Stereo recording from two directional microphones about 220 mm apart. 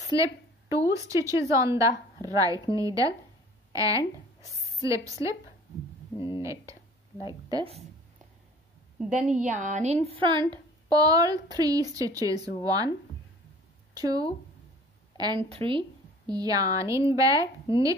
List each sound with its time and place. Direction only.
0.1 s a woman's voice: 15° right (ahead or behind)
6.1 s speech: 25° left (ahead or behind)
6.4 s a woman's voice: 15° right (ahead or behind)
9.3 s a woman's voice: 35° right (ahead or behind)
10.0 s a woman's voice: 20° right (ahead or behind)
13.9 s a woman's voice: 15° right (ahead or behind)